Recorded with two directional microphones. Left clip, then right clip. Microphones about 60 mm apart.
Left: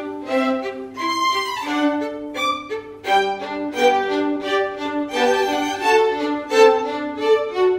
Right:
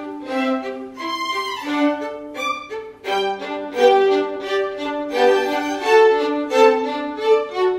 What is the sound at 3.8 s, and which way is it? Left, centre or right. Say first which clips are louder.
Music: right 3 dB; centre.